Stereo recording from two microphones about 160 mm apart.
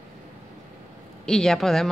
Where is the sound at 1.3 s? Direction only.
Centre (ahead or behind).